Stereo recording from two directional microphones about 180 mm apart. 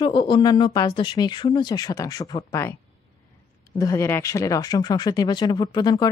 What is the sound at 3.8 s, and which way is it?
A woman's voice, 15° left (ahead or behind).